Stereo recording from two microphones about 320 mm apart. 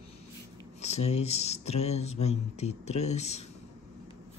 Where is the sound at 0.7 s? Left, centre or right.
Centre.